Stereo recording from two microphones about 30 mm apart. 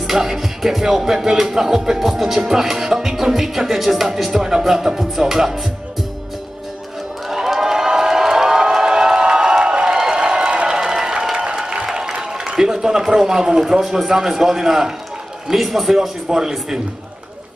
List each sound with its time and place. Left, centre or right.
0.0 s music: centre
7.2 s crowd: centre; by 9.6 s right
9.7 s a sound: right
13.8 s music: centre
16.3 s a man's voice: right